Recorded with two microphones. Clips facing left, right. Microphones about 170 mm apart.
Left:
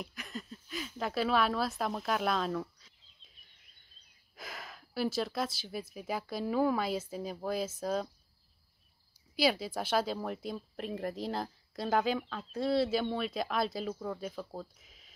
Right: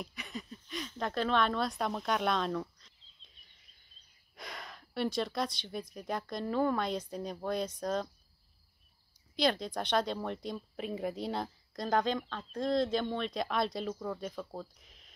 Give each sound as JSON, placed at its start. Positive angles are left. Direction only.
{"t": 0.0, "sound": "speech", "side_deg": 0}
{"t": 9.3, "sound": "speech", "side_deg": 5}